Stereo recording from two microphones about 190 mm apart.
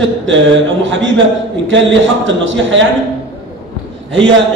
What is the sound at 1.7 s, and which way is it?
A man's voice, 75° right (ahead or behind).